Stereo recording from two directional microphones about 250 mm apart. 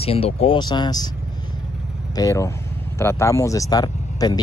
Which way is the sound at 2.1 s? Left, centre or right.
Centre.